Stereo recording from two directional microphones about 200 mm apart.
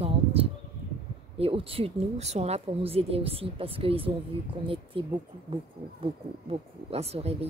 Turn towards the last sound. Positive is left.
turn(degrees=-30)  # may be behind; listen again after turning